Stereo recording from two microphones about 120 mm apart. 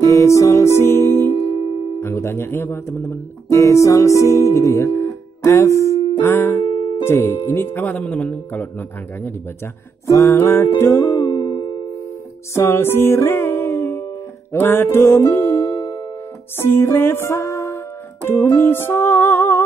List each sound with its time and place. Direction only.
0.0 s music: 25° left (ahead or behind)
1.3 s music: 45° left (ahead or behind)
2.0 s speech: 20° left (ahead or behind)
6.6 s music: 50° left (ahead or behind)
7.1 s speech: 20° left (ahead or behind)
10.8 s music: 20° left (ahead or behind)
11.2 s music: 40° left (ahead or behind)
12.5 s music: 20° left (ahead or behind)